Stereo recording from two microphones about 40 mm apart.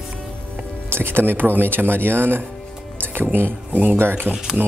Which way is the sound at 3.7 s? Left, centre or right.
Right.